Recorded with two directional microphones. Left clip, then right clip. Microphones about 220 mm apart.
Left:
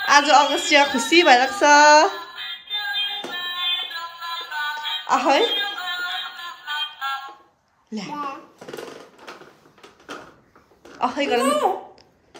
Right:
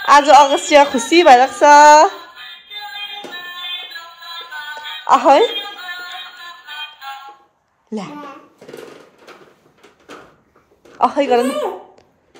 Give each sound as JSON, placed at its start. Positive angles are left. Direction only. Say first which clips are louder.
{"t": 0.0, "sound": "a woman's voice", "louder": "right 7 dB", "side_deg": 5}
{"t": 5.0, "sound": "a woman's voice", "louder": "right 8 dB", "side_deg": 0}
{"t": 7.9, "sound": "a woman's voice", "louder": "right 1 dB", "side_deg": 0}
{"t": 11.0, "sound": "a woman's voice", "louder": "right 7 dB", "side_deg": 0}